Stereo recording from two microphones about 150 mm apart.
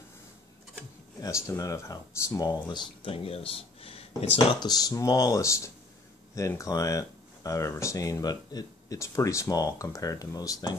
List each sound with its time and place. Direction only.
1.2 s speech: 20° left (ahead or behind); by 4.3 s 40° left (ahead or behind)
4.6 s speech: 25° left (ahead or behind)